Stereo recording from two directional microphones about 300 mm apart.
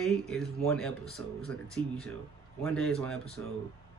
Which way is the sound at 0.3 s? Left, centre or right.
Centre.